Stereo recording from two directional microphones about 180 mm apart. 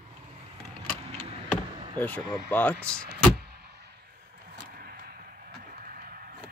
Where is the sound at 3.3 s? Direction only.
65° right (ahead or behind).